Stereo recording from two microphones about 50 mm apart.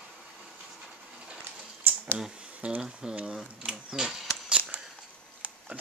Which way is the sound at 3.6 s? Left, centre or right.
Centre.